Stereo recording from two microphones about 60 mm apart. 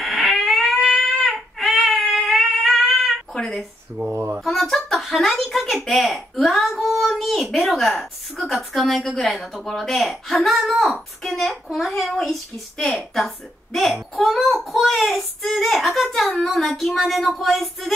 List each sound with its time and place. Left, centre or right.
0.0 s baby cry: centre
3.3 s speech: centre
3.9 s speech: right
4.5 s a child's voice: centre